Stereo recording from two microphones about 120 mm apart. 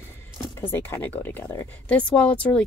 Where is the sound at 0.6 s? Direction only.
20° left (ahead or behind).